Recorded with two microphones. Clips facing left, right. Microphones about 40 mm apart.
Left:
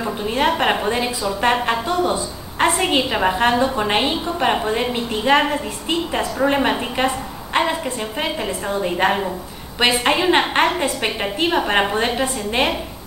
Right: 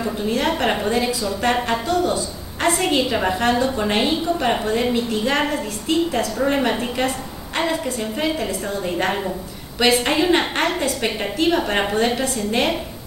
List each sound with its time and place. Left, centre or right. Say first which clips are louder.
0.0 s a woman's voice: left 2 dB; centre